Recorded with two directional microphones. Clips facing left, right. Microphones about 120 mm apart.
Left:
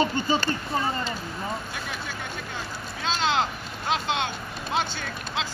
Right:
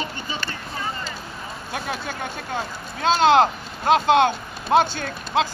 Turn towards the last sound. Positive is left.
turn(degrees=-50)  # may be behind; listen again after turning